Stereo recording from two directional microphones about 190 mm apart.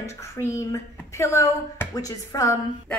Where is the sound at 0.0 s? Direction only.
15° left (ahead or behind).